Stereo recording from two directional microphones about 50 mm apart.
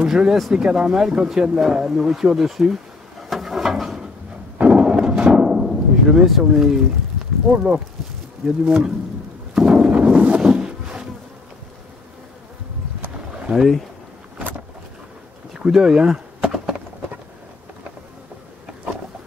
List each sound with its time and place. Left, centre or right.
0.0 s speech: centre
4.6 s a sound: right
5.6 s timpani: centre
6.2 s speech: centre
8.6 s speech: centre
9.6 s a sound: centre
15.5 s chop: centre